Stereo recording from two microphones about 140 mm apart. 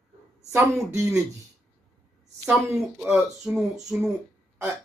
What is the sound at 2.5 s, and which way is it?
Speech, 20° right (ahead or behind).